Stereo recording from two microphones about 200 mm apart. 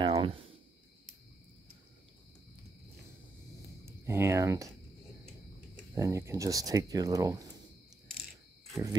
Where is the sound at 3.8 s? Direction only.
10° right (ahead or behind).